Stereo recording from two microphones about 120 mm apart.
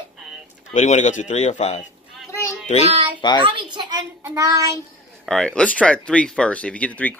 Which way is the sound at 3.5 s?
40° right (ahead or behind).